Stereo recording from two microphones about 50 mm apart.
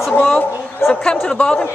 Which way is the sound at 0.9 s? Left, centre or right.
Centre.